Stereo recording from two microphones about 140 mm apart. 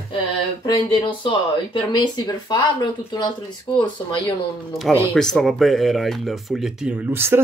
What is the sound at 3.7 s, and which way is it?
Speech, 25° left (ahead or behind).